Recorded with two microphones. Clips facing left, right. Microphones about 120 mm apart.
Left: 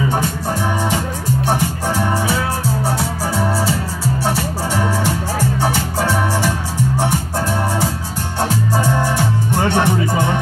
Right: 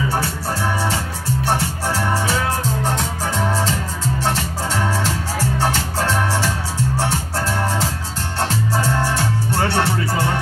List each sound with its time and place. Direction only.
0.1 s music: 15° left (ahead or behind)